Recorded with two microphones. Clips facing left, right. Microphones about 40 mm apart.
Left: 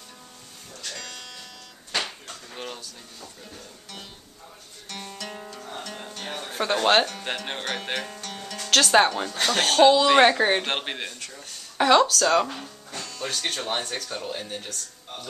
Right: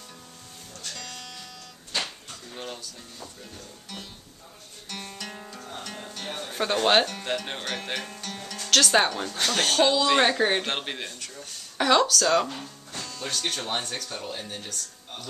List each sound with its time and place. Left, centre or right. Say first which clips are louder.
0.9 s music: even; centre
2.5 s music: left 1 dB; centre
5.1 s music: left 2 dB; centre
6.5 s speech: left 1 dB; centre
7.2 s speech: even; centre
7.9 s speech: left 2 dB; centre
8.3 s music: left 1 dB; centre
8.6 s speech: left 3 dB; centre
11.1 s a sound: even; centre
13.0 s speech: left 1 dB; centre